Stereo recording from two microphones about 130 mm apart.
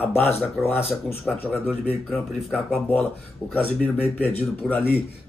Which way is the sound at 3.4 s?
15° left (ahead or behind).